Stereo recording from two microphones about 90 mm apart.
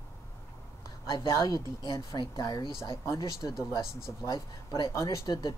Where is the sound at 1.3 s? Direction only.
40° left (ahead or behind).